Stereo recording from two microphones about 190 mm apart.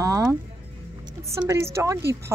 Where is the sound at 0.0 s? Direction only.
15° right (ahead or behind).